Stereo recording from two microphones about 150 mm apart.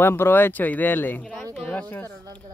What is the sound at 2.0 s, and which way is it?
Speech, 25° right (ahead or behind).